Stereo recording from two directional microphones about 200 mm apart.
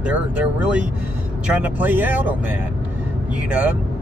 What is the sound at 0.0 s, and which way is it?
Speech, 5° right (ahead or behind).